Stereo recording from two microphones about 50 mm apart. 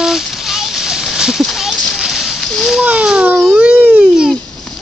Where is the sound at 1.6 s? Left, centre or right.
Centre.